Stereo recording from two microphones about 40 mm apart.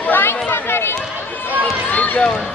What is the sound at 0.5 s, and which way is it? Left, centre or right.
Run, left.